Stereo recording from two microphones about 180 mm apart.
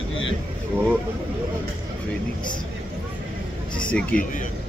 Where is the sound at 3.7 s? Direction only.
5° left (ahead or behind).